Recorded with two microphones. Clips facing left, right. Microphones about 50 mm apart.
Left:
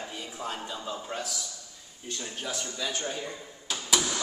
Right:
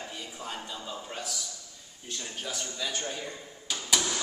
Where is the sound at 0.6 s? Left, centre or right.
Centre.